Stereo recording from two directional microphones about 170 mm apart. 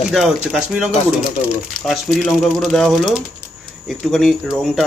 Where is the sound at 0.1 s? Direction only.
Centre (ahead or behind).